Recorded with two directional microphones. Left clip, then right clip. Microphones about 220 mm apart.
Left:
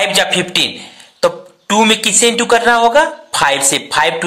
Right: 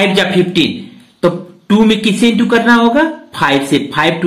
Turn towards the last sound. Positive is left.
turn(degrees=35)  # may be behind; listen again after turning